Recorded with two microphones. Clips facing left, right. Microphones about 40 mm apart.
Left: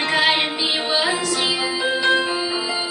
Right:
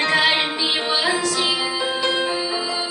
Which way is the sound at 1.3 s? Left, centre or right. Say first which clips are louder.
Even; left.